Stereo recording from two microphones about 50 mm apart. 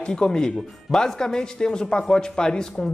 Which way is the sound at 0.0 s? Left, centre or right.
Centre.